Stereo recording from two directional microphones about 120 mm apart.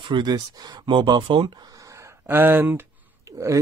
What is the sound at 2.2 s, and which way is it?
Speech, 15° right (ahead or behind).